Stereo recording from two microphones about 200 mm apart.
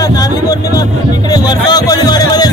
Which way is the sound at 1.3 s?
20° left (ahead or behind).